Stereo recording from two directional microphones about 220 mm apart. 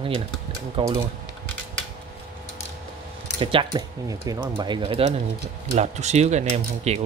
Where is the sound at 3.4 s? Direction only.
25° right (ahead or behind).